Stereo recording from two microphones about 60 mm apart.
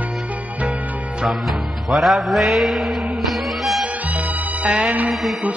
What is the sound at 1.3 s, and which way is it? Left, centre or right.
Music, centre.